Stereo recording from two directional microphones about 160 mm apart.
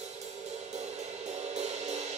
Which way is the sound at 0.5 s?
45° right (ahead or behind).